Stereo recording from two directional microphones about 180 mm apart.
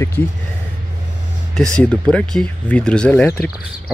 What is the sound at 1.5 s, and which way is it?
Speech, 5° left (ahead or behind).